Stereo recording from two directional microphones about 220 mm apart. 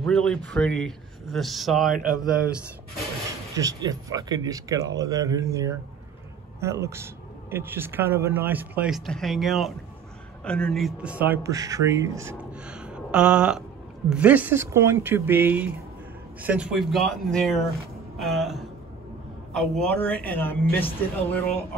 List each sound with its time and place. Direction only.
0.0 s speech: 5° left (ahead or behind)
3.5 s speech: 15° right (ahead or behind); by 17.6 s centre (ahead or behind)
18.1 s a sound: centre (ahead or behind)
19.5 s speech: centre (ahead or behind)